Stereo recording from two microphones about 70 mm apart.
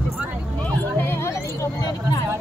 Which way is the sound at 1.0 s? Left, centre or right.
Left.